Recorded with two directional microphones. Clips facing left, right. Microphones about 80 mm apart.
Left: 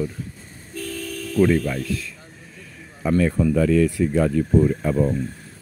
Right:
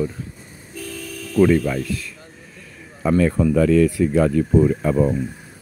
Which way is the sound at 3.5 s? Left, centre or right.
Right.